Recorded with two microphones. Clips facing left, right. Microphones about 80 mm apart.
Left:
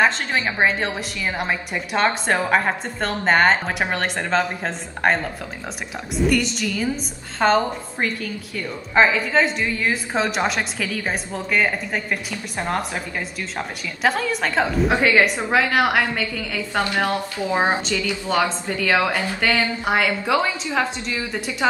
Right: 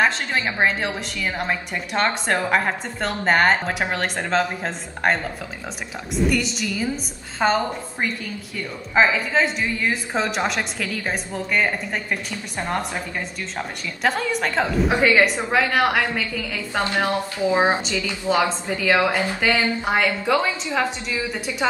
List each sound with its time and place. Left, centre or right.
0.0 s a woman's voice: centre
6.2 s a woman's voice: centre
14.0 s a woman's voice: centre
16.8 s a woman's voice: right; by 19.1 s centre
19.1 s a woman's voice: centre
19.9 s a woman's voice: centre